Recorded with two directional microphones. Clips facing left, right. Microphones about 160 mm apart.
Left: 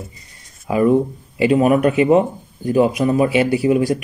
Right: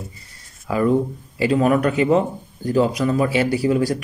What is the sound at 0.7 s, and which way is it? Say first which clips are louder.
Speech: left 3 dB; 15° left (ahead or behind).